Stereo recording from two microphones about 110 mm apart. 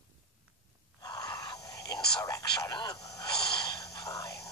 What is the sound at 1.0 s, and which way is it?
Whispering, 35° left (ahead or behind).